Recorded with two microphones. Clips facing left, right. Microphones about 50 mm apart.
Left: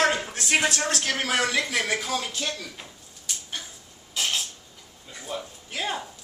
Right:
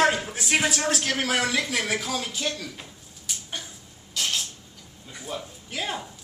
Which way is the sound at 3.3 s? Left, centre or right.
Centre.